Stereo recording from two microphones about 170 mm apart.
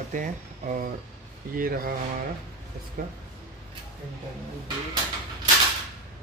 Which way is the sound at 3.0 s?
55° right (ahead or behind).